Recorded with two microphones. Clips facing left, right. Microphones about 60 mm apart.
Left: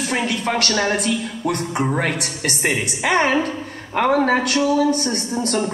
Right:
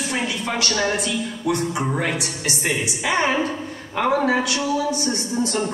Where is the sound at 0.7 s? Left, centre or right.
Left.